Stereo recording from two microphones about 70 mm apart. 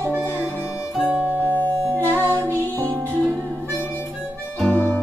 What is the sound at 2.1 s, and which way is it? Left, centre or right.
Music, right.